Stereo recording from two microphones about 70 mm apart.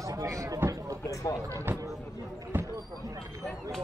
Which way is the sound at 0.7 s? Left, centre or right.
Right.